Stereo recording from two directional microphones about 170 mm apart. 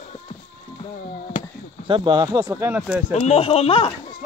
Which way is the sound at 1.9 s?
25° right (ahead or behind).